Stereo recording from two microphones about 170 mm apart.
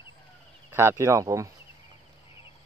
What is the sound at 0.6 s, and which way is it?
Speech, 15° right (ahead or behind).